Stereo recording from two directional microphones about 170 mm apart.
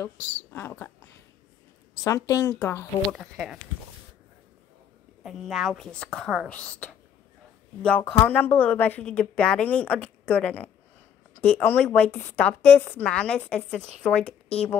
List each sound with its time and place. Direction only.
0.0 s a woman's voice: 15° left (ahead or behind)
2.0 s a woman's voice: 20° left (ahead or behind)
3.2 s a woman's voice: centre (ahead or behind)
5.2 s a woman's voice: centre (ahead or behind)
8.0 s a woman's voice: 10° left (ahead or behind)